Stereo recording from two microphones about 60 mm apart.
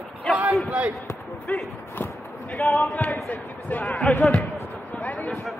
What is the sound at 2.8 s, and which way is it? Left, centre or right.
Speech, left.